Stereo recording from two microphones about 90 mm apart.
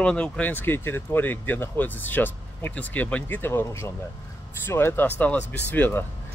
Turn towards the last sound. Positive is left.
turn(degrees=20)  # may be behind; listen again after turning